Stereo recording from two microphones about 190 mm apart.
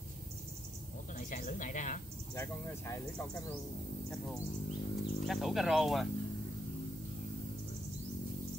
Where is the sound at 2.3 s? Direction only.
15° left (ahead or behind).